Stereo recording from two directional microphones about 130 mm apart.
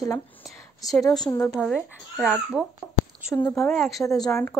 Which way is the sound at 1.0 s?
30° left (ahead or behind).